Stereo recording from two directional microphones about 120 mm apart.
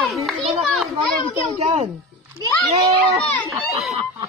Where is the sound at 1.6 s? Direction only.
60° right (ahead or behind).